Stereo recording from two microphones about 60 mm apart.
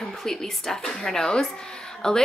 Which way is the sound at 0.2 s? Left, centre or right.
Centre.